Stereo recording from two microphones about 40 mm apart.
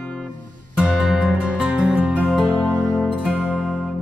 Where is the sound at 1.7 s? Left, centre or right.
Right.